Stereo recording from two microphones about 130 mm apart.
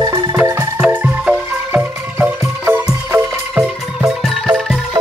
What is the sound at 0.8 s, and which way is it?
Music, 10° right (ahead or behind).